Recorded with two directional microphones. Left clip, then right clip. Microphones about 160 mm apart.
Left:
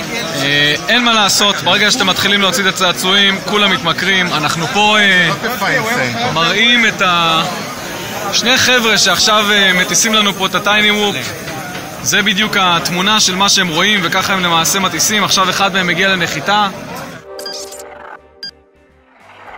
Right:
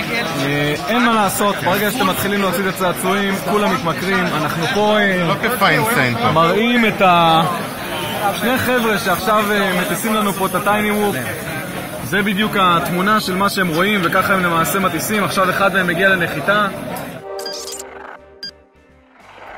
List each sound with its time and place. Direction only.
0.5 s speech: 10° left (ahead or behind)
6.3 s speech: 10° right (ahead or behind)
8.5 s speech: 10° left (ahead or behind)
12.1 s speech: 10° left (ahead or behind)
15.6 s a man's voice: 30° left (ahead or behind)